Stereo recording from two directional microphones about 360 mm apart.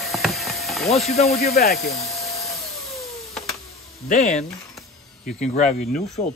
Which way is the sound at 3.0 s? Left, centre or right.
Centre.